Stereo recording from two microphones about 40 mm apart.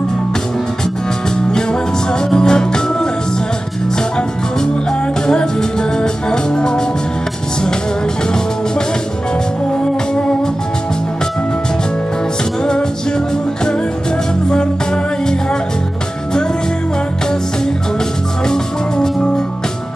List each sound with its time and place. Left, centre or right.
2.3 s music: centre
5.2 s music: centre
18.5 s music: centre